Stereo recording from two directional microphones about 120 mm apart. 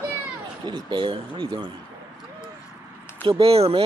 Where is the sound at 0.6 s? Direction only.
40° right (ahead or behind).